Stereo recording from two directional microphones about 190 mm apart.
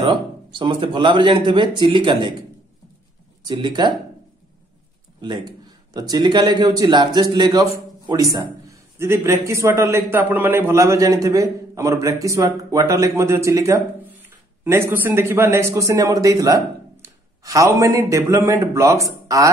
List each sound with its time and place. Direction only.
0.0 s speech: 25° right (ahead or behind)
3.4 s speech: 25° right (ahead or behind)
5.2 s a man's voice: 20° right (ahead or behind)